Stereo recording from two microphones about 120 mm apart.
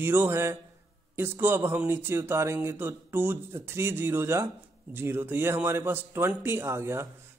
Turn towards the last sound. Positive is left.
turn(degrees=-20)  # may be behind; listen again after turning